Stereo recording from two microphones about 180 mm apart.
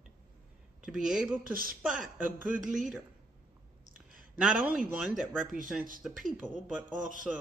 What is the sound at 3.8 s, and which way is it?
Clicking, 50° right (ahead or behind).